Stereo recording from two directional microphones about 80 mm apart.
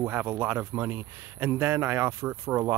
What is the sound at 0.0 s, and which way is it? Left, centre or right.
Speech, right.